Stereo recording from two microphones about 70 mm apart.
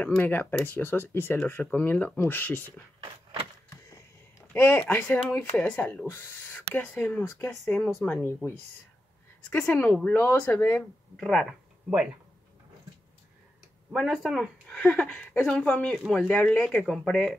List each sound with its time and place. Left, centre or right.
0.0 s speech: left
3.7 s a sound: left
4.6 s speech: left
6.0 s speech: left
6.5 s speech: left
9.5 s speech: left
9.8 s speech: centre
10.1 s speech: left
11.1 s speech: centre
13.9 s speech: centre
14.8 s speech: centre
16.8 s speech: centre